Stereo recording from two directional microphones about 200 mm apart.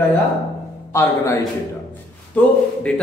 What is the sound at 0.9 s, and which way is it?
A woman's voice, 15° left (ahead or behind).